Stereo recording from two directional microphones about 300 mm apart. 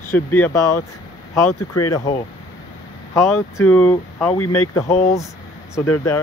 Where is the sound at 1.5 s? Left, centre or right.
Left.